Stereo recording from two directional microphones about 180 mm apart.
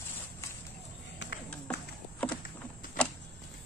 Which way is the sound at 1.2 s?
80° left.